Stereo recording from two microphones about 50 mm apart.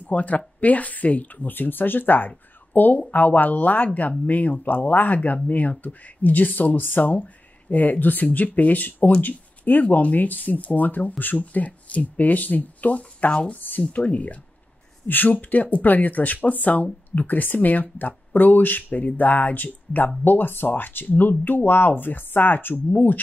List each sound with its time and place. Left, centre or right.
0.0 s speech: left
13.3 s speech: centre
13.6 s speech: left